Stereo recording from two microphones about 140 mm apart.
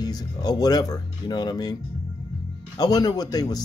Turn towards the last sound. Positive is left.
turn(degrees=30)  # may be behind; listen again after turning